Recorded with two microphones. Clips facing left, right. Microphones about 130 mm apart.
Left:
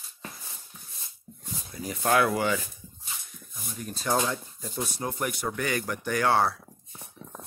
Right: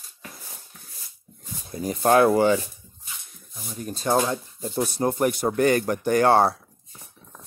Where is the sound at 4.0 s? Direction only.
25° right (ahead or behind).